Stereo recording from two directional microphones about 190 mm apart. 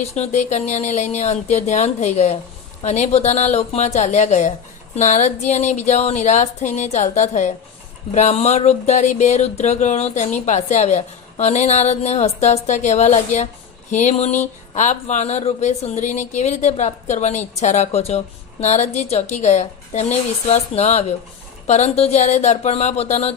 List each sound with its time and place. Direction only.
0.1 s speech: 35° left (ahead or behind)